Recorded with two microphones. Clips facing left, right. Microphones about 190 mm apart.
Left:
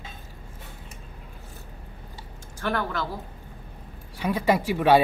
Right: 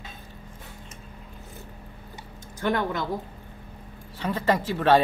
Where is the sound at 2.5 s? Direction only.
20° right (ahead or behind).